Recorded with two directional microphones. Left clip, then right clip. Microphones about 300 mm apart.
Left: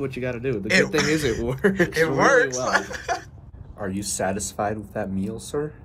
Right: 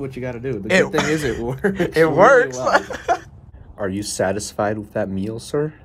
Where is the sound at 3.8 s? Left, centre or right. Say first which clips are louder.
Right 5 dB; right.